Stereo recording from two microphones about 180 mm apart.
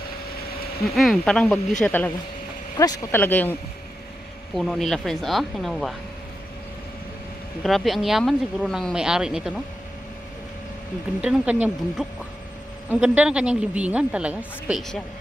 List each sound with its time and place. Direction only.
0.8 s a woman's voice: centre (ahead or behind)
2.8 s speech: 20° left (ahead or behind)
3.2 s speech: 10° left (ahead or behind)
4.6 s a woman's voice: centre (ahead or behind)
7.6 s a woman's voice: centre (ahead or behind)
11.1 s a woman's voice: 5° right (ahead or behind)